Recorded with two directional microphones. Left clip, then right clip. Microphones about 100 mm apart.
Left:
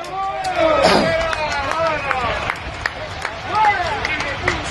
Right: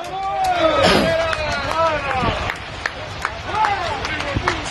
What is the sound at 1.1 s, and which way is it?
Run, 20° right (ahead or behind).